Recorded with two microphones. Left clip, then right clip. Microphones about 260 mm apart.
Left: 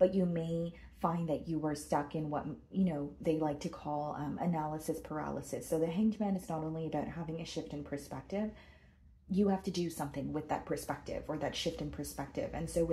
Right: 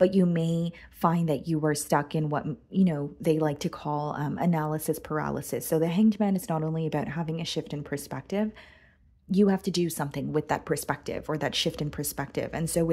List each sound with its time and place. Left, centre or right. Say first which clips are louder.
0.0 s speech: right 6 dB; right